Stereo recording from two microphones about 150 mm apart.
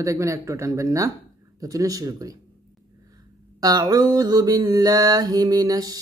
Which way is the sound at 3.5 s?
25° right (ahead or behind).